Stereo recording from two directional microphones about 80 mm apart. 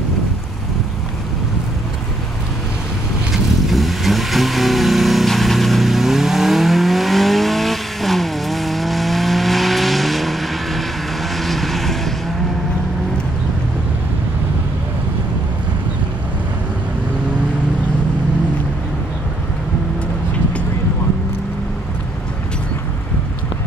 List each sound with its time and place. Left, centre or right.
3.7 s vehicle: centre